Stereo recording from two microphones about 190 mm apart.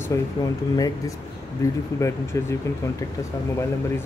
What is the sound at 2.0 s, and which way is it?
Speech, 15° left (ahead or behind).